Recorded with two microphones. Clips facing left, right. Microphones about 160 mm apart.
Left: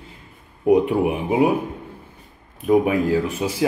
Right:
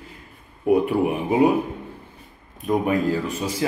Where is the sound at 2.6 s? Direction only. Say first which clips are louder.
Left 3 dB; 10° left (ahead or behind).